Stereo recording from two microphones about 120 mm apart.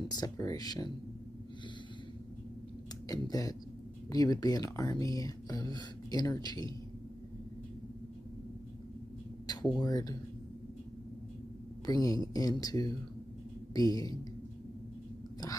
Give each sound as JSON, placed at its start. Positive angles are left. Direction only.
{"t": 0.1, "sound": "speech", "side_deg": 35}
{"t": 3.1, "sound": "speech", "side_deg": 30}
{"t": 9.5, "sound": "speech", "side_deg": 35}
{"t": 11.8, "sound": "speech", "side_deg": 30}